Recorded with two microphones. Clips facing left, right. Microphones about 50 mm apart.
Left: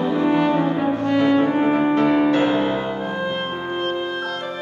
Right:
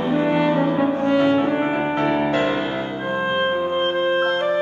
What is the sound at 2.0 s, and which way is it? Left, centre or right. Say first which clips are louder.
Music: left 1 dB; centre.